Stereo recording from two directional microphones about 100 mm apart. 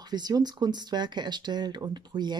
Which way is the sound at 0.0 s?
45° right (ahead or behind).